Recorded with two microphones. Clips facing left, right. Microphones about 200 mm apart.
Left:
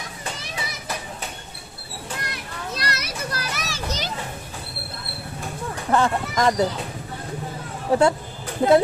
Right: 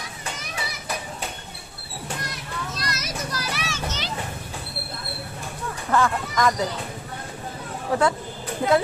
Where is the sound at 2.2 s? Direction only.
65° left (ahead or behind).